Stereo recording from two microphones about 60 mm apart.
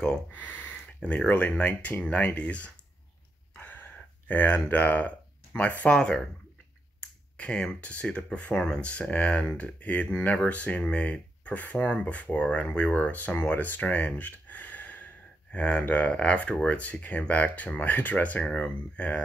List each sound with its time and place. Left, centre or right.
0.3 s speech: left
3.5 s a sound: left
4.7 s speech: left
7.3 s speech: centre